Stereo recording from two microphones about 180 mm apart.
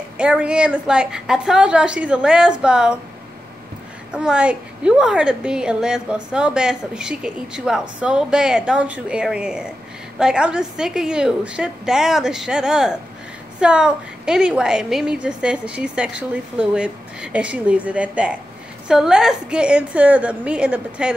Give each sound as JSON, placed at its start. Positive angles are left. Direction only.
{"t": 0.2, "sound": "a woman's voice", "side_deg": -5}
{"t": 4.1, "sound": "a woman's voice", "side_deg": -5}